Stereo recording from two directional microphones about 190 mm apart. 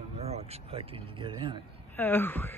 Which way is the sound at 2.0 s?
10° left (ahead or behind).